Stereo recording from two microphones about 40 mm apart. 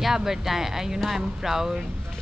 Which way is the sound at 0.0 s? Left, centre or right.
Centre.